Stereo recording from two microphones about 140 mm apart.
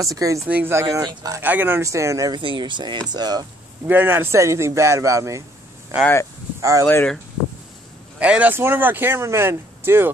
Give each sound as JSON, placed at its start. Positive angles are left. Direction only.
{"t": 0.0, "sound": "a man's voice", "side_deg": -25}
{"t": 1.4, "sound": "a man's voice", "side_deg": -15}
{"t": 3.8, "sound": "a man's voice", "side_deg": -10}
{"t": 6.6, "sound": "a man's voice", "side_deg": -20}
{"t": 8.2, "sound": "speech", "side_deg": -10}